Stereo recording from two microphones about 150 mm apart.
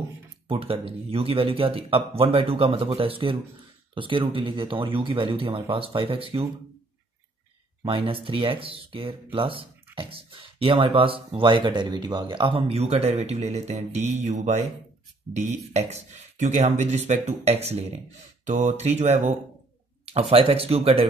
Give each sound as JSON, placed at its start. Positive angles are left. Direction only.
{"t": 0.5, "sound": "speech", "side_deg": -40}
{"t": 7.8, "sound": "speech", "side_deg": -35}